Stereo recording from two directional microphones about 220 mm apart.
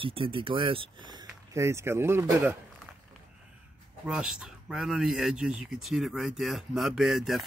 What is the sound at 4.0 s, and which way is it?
Speech, 5° right (ahead or behind).